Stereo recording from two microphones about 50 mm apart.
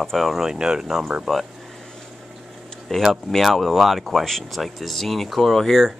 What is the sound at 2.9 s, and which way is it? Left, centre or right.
Speech, centre.